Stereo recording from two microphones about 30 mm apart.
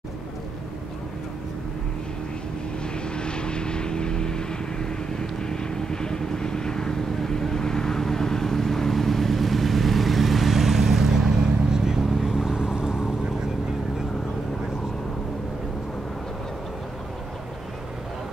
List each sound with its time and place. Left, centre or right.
3.1 s vehicle: left; by 12.0 s centre
12.3 s boat: centre